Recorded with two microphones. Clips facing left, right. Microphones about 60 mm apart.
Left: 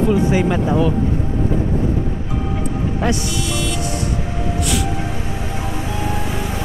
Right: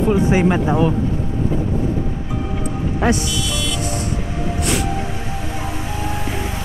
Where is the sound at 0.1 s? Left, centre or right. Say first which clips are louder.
Right 1 dB; right.